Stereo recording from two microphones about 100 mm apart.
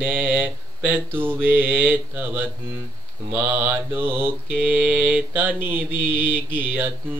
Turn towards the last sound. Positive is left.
turn(degrees=-20)  # may be behind; listen again after turning